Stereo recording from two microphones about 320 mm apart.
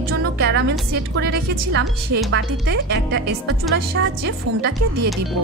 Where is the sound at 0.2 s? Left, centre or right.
Right.